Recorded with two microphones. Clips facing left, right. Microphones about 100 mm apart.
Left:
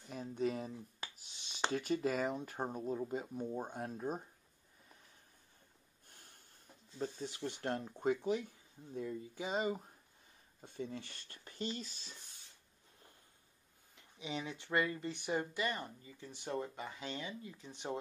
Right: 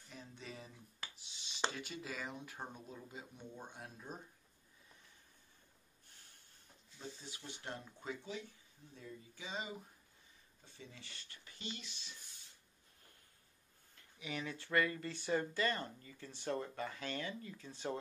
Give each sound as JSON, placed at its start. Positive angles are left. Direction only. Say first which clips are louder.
{"t": 0.1, "sound": "a sound", "louder": "left 14 dB", "side_deg": 45}
{"t": 1.7, "sound": "speech", "louder": "left 11 dB", "side_deg": 45}
{"t": 6.0, "sound": "snort", "louder": "left 5 dB", "side_deg": 45}
{"t": 7.0, "sound": "speech", "louder": "left 10 dB", "side_deg": 45}
{"t": 13.9, "sound": "speech", "louder": "left 2 dB", "side_deg": 20}